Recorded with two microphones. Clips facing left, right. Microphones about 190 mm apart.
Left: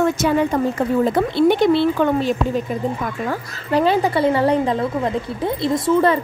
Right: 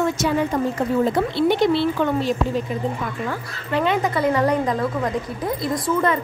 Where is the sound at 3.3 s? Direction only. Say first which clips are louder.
Left 4 dB; 35° left (ahead or behind).